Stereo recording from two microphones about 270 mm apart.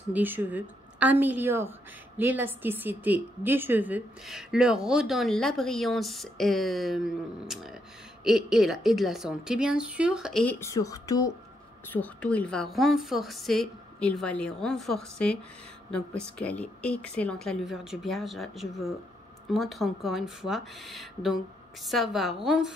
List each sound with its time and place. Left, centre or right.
0.1 s a woman's voice: centre